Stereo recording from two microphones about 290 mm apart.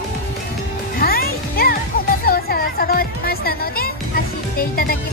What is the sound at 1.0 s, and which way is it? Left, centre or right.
Music, left.